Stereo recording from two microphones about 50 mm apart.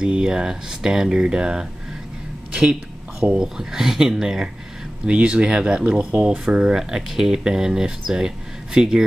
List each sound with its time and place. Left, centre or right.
0.0 s speech: centre
2.5 s a sound: centre
3.3 s speech: centre
5.0 s speech: right